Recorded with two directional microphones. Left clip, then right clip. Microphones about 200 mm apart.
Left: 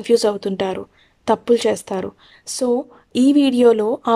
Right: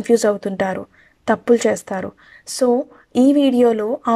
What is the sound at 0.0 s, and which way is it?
Speech, 10° left (ahead or behind).